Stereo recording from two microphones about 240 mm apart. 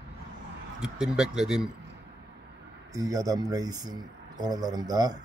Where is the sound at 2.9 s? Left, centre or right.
Centre.